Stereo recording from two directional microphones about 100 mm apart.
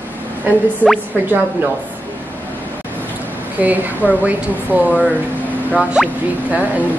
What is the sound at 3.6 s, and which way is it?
Speech, 15° right (ahead or behind).